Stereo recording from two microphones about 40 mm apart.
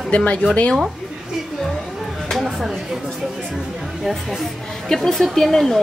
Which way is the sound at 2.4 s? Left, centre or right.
Centre.